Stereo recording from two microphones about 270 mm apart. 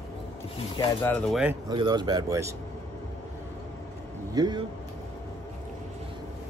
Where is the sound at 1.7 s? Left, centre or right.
Centre.